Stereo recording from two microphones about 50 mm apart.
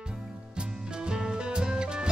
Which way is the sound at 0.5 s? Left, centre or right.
Centre.